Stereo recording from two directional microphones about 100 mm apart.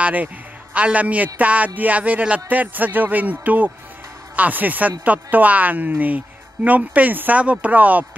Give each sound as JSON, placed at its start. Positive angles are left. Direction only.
{"t": 0.0, "sound": "a man's voice", "side_deg": -15}